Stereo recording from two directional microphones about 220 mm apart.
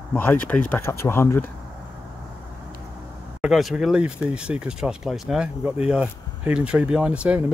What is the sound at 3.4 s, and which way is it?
Speech, centre (ahead or behind).